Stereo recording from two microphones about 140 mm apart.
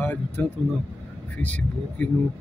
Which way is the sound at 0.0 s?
10° left (ahead or behind).